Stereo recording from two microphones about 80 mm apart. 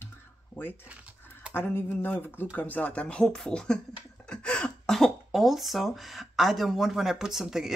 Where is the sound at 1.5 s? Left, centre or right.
Left; by 7.7 s centre.